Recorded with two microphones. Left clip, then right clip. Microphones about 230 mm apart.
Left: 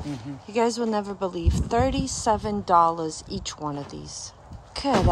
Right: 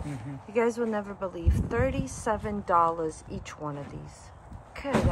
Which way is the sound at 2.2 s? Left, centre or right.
Centre.